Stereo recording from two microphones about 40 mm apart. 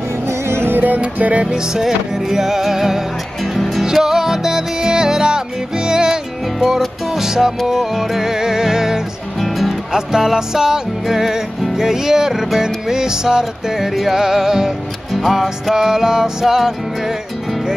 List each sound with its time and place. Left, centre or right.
0.5 s music: right
0.7 s music: right
1.8 s music: centre
7.2 s music: centre
9.4 s music: centre
9.9 s music: centre